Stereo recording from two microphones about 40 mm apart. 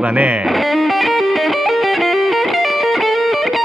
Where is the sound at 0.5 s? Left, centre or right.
Centre.